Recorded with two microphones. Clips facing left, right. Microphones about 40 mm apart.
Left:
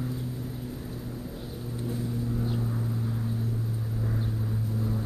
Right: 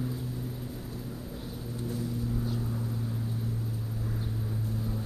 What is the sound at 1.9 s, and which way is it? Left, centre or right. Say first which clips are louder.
Vehicle: left 2 dB; centre.